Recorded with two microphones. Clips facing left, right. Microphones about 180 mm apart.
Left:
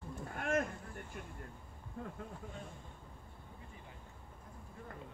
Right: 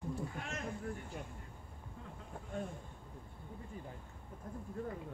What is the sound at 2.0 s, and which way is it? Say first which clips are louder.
Speech: left 8 dB; 55° left (ahead or behind).